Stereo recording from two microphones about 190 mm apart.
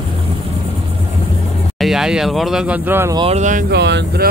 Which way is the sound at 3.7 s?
65° right (ahead or behind).